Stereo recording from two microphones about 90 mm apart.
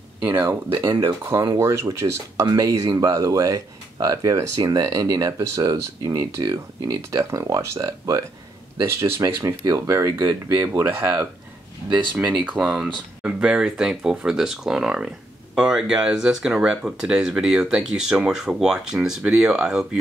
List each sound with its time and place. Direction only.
0.2 s speech: 25° right (ahead or behind)
1.6 s speech: 35° right (ahead or behind)
10.9 s speech: 20° right (ahead or behind)
12.3 s speech: centre (ahead or behind)